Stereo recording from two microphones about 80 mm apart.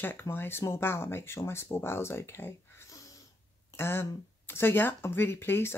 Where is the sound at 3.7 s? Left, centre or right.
Left.